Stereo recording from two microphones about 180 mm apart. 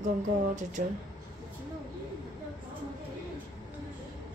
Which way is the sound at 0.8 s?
45° right (ahead or behind).